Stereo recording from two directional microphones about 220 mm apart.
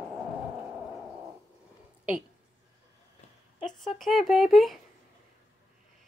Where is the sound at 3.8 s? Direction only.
Centre (ahead or behind).